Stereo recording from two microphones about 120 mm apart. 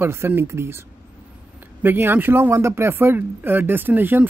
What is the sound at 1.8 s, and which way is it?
Speech, 20° right (ahead or behind).